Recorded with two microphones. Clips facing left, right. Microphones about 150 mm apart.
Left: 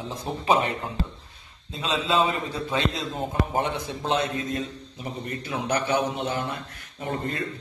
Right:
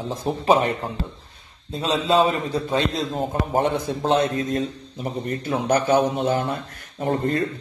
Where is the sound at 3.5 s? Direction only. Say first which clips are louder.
Right 6 dB; 45° right (ahead or behind).